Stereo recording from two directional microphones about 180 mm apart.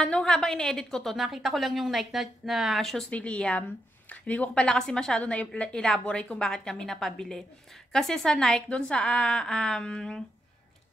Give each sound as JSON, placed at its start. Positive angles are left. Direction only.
{"t": 0.0, "sound": "a woman's voice", "side_deg": 5}